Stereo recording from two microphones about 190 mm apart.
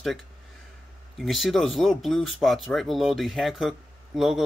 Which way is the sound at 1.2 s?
Centre (ahead or behind).